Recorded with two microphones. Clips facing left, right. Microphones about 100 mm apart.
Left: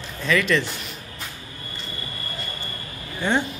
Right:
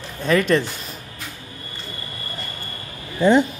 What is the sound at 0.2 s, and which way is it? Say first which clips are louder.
Speech: right 4 dB; 45° right (ahead or behind).